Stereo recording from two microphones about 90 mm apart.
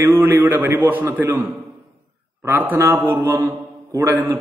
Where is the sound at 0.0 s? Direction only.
25° right (ahead or behind).